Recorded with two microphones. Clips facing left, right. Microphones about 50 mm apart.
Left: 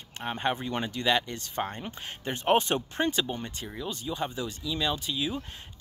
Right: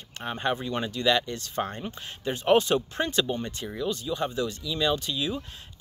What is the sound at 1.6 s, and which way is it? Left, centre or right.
Speech, centre.